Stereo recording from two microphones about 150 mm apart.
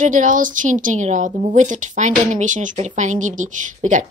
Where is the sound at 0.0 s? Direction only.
60° right (ahead or behind).